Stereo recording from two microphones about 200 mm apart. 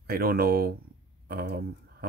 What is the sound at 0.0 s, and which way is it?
Speech, 50° right (ahead or behind).